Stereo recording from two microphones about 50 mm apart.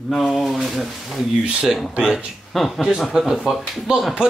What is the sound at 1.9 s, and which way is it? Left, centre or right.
Speech, right.